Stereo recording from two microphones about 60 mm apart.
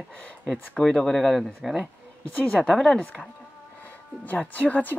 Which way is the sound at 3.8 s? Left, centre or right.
Left.